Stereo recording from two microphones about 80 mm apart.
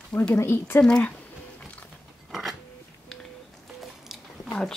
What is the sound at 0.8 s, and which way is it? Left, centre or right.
Speech, centre.